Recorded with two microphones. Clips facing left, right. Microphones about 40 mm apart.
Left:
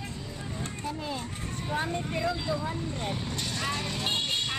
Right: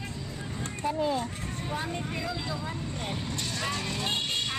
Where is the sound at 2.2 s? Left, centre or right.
Centre.